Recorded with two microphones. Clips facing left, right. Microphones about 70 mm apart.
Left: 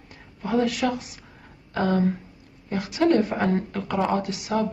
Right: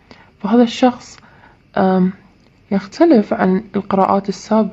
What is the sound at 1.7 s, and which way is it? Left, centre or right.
A woman's voice, right.